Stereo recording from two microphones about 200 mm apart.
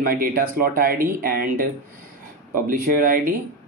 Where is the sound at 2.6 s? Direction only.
45° right (ahead or behind).